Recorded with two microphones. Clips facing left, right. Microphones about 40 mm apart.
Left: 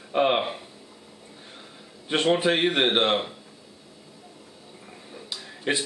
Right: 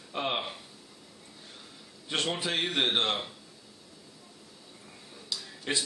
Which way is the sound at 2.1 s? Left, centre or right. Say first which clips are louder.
Left 9 dB; left.